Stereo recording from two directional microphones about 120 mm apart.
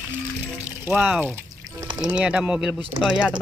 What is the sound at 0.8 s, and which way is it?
Speech, 10° right (ahead or behind).